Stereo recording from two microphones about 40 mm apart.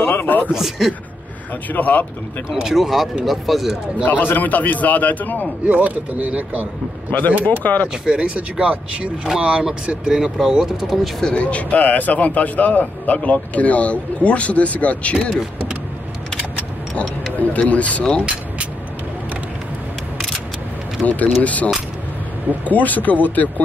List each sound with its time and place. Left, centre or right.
0.1 s a sound: left
0.5 s speech: centre
1.7 s a man's voice: left
2.7 s speech: centre
4.0 s a man's voice: left
5.7 s speech: right
7.1 s a man's voice: left
8.0 s speech: right
10.0 s speech: centre
11.3 s a man's voice: left
16.9 s speech: left
21.0 s a man's voice: left
22.7 s a man's voice: left